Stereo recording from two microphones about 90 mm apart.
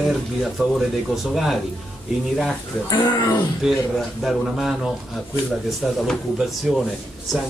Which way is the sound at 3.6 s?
5° right (ahead or behind).